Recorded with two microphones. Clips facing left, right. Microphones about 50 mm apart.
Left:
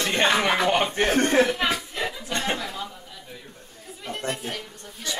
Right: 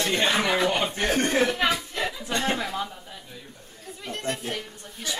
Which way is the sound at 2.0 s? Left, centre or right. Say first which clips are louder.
Even; centre.